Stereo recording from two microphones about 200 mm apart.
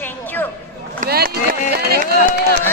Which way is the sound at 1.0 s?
50° right (ahead or behind).